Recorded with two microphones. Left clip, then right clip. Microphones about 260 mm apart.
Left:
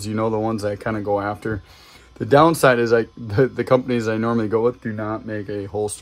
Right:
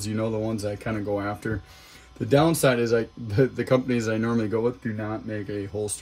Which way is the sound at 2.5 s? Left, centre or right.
Centre.